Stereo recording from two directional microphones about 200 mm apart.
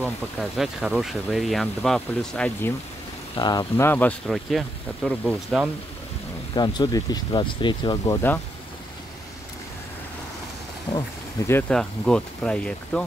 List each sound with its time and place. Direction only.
0.0 s speech: centre (ahead or behind)
3.3 s speech: 20° left (ahead or behind); by 5.7 s 5° right (ahead or behind)
6.5 s speech: 20° left (ahead or behind)
10.9 s speech: 20° left (ahead or behind)
11.5 s speech: 5° left (ahead or behind)